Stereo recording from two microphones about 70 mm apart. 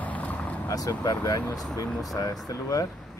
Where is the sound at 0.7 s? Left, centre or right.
Left.